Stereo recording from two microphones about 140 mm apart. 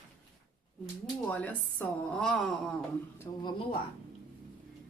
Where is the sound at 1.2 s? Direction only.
10° left (ahead or behind).